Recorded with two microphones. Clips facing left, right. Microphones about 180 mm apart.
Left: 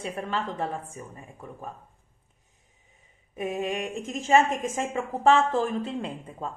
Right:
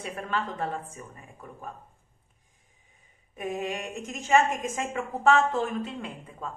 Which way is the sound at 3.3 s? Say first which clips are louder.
Left 3 dB; 20° left (ahead or behind).